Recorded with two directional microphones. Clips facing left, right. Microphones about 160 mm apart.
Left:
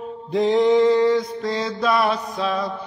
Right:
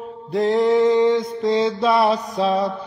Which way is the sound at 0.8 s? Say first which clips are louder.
Right 1 dB; 20° right (ahead or behind).